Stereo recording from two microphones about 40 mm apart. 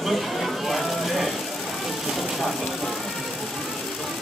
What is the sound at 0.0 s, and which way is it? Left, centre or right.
Vehicle, centre.